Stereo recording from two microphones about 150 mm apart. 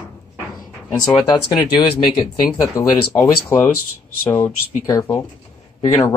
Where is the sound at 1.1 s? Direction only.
30° left (ahead or behind).